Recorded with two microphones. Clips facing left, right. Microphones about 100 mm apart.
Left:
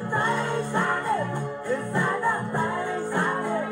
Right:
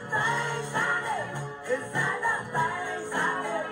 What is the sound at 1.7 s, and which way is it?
Music, 15° left (ahead or behind).